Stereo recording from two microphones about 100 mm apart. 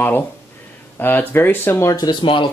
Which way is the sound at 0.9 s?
20° left (ahead or behind).